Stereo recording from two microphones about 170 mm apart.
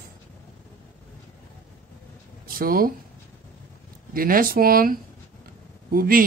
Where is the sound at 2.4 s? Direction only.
60° right (ahead or behind).